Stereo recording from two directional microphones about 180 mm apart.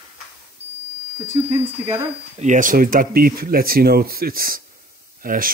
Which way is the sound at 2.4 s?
45° right (ahead or behind).